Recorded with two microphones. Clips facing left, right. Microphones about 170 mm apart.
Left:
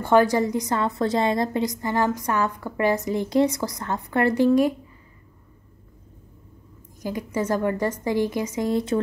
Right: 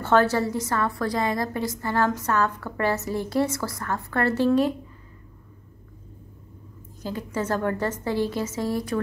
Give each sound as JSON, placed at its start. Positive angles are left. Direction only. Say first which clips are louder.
{"t": 0.0, "sound": "a woman's voice", "louder": "left 2 dB", "side_deg": 15}
{"t": 7.0, "sound": "a woman's voice", "louder": "left 2 dB", "side_deg": 15}